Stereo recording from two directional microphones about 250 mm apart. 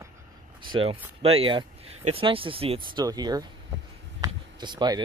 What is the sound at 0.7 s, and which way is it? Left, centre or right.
Speech, right.